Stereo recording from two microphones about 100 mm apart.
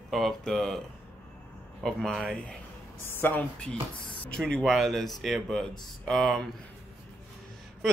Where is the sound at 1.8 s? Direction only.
5° left (ahead or behind).